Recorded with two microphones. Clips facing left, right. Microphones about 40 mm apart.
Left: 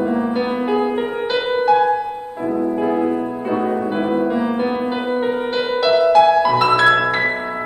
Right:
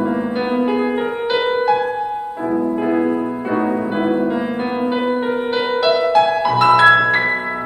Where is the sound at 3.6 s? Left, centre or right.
Centre.